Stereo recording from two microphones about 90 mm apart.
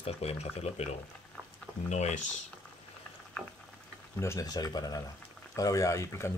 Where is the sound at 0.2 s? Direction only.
90° left.